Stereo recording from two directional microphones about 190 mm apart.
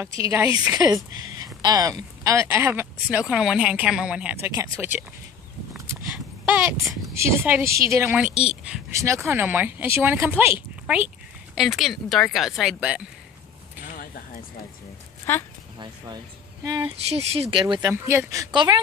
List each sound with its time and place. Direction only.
0.2 s speech: 15° right (ahead or behind)
6.4 s a woman's voice: 10° right (ahead or behind)
8.9 s a woman's voice: 15° right (ahead or behind)
13.9 s a sound: 50° left (ahead or behind)
15.3 s speech: 10° left (ahead or behind)
16.6 s speech: 20° right (ahead or behind)
17.1 s speech: 35° right (ahead or behind)
17.8 s speech: 15° right (ahead or behind)